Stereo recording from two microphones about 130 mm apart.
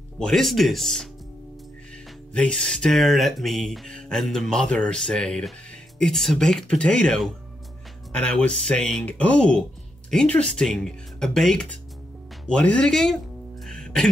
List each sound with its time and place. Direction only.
0.2 s speech: 5° left (ahead or behind)
2.3 s speech: 5° left (ahead or behind)
13.7 s music: 5° left (ahead or behind)